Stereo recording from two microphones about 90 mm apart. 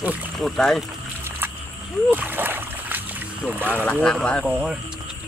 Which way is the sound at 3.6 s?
20° right (ahead or behind).